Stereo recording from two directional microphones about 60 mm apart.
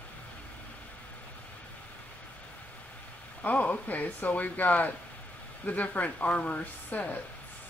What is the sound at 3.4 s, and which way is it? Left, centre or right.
Speech, left.